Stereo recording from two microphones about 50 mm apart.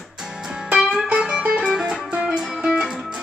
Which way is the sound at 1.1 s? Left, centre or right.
Centre.